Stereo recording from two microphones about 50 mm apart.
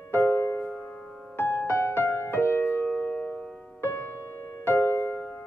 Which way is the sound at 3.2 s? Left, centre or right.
Left.